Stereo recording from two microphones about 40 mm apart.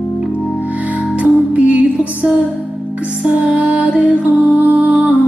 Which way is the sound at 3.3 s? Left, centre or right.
Right.